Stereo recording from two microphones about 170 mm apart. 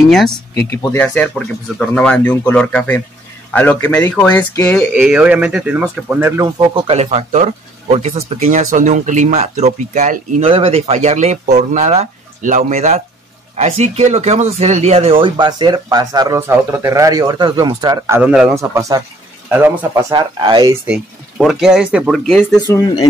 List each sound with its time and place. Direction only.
0.1 s speech: centre (ahead or behind)
4.9 s speech: 5° right (ahead or behind)
6.4 s speech: 30° right (ahead or behind)
7.0 s speech: 40° right (ahead or behind)
10.5 s speech: 35° right (ahead or behind); by 18.2 s 20° right (ahead or behind)
18.2 s speech: 5° right (ahead or behind)
18.5 s speech: 20° right (ahead or behind)
20.8 s speech: 5° right (ahead or behind)